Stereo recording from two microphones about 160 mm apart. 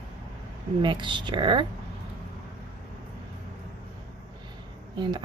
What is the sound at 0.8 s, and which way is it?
Speech, 30° right (ahead or behind).